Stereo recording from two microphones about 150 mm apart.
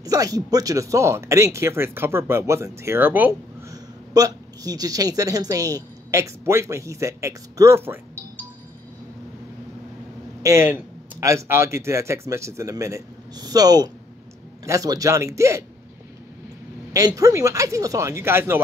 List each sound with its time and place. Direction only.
0.0 s a woman's voice: 25° right (ahead or behind)
4.1 s a woman's voice: 25° right (ahead or behind)
10.4 s a woman's voice: 15° right (ahead or behind)
16.9 s a woman's voice: 20° right (ahead or behind)